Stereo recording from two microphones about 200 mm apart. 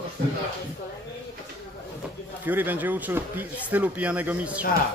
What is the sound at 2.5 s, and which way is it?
Speech, 10° right (ahead or behind).